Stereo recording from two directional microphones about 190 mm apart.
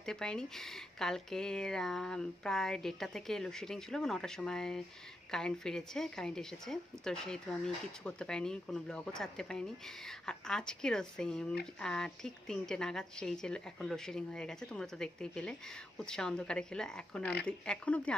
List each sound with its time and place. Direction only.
0.0 s a woman's voice: 5° left (ahead or behind)
17.2 s speech: 60° left (ahead or behind)
17.5 s speech: 5° left (ahead or behind)